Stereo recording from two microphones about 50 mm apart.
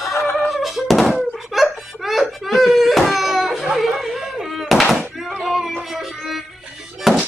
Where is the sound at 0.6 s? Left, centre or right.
Centre.